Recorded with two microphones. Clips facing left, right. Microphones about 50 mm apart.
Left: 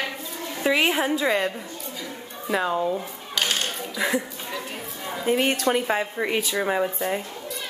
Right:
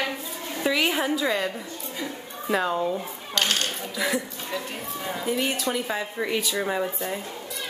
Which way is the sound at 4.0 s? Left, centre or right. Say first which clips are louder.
Left 2 dB; left.